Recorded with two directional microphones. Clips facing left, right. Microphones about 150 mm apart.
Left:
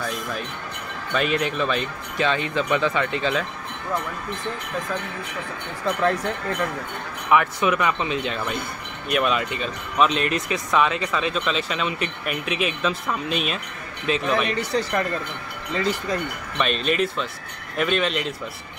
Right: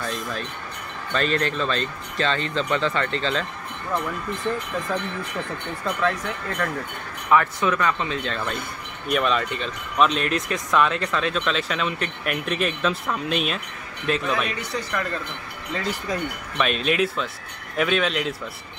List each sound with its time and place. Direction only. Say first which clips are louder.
0.0 s speech: even; 10° left (ahead or behind)
7.2 s speech: even; 15° left (ahead or behind)
14.8 s speech: left 4 dB; 35° left (ahead or behind)
15.7 s speech: left 3 dB; centre (ahead or behind)